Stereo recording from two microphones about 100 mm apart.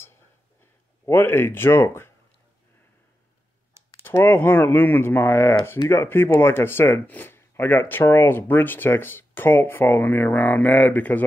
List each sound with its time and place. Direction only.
1.0 s speech: 20° left (ahead or behind)
4.0 s speech: 20° left (ahead or behind)